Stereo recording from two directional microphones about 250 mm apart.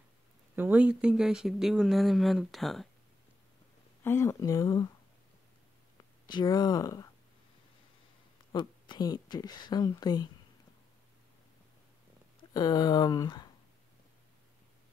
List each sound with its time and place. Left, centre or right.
0.6 s speech: centre
4.0 s speech: centre
6.2 s speech: centre
8.5 s speech: centre
12.5 s speech: centre